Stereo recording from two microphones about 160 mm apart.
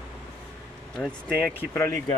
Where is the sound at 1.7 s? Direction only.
15° left (ahead or behind).